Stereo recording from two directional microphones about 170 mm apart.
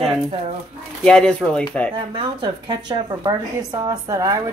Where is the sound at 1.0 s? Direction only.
5° left (ahead or behind).